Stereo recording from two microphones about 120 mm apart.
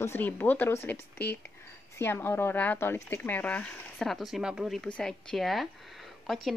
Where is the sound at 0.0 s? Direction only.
15° left (ahead or behind); by 4.8 s centre (ahead or behind).